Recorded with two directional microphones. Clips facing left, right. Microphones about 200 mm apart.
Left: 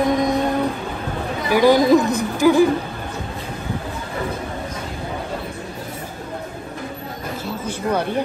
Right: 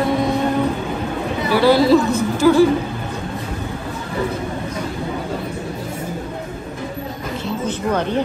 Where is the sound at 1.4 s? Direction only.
15° left (ahead or behind).